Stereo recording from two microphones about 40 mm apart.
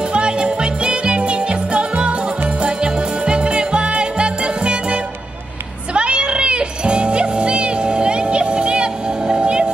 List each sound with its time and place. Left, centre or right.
0.1 s music: right